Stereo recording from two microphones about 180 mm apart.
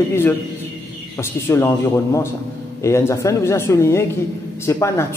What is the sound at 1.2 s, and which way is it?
A man's voice, 15° left (ahead or behind).